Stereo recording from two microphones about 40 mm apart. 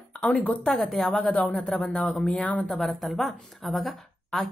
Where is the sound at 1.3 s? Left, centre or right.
Left.